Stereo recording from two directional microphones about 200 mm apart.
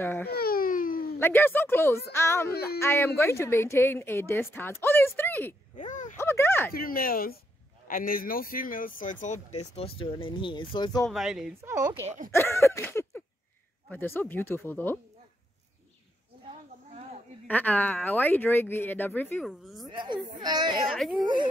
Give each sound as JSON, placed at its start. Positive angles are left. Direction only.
{"t": 0.0, "sound": "speech", "side_deg": 10}
{"t": 0.3, "sound": "baby cry", "side_deg": 50}
{"t": 1.2, "sound": "speech", "side_deg": 10}
{"t": 2.5, "sound": "speech", "side_deg": 50}
{"t": 2.8, "sound": "speech", "side_deg": 10}
{"t": 5.8, "sound": "a sound", "side_deg": 40}
{"t": 6.1, "sound": "a sound", "side_deg": 10}
{"t": 6.7, "sound": "speech", "side_deg": 45}
{"t": 11.1, "sound": "speech", "side_deg": 0}
{"t": 11.7, "sound": "speech", "side_deg": -15}
{"t": 12.3, "sound": "speech", "side_deg": 15}
{"t": 17.5, "sound": "speech", "side_deg": 10}
{"t": 19.9, "sound": "a child's voice", "side_deg": -20}